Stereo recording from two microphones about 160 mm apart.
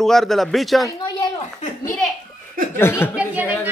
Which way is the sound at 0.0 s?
Centre (ahead or behind).